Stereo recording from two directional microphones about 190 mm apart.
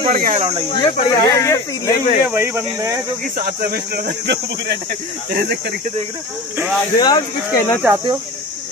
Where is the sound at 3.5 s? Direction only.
55° right (ahead or behind).